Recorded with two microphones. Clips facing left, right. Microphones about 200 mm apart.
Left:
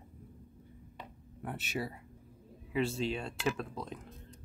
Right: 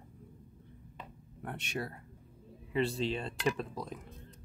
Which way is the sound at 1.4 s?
5° left (ahead or behind).